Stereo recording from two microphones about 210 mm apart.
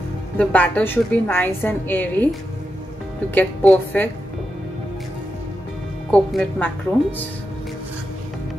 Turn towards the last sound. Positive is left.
turn(degrees=5)  # may be behind; listen again after turning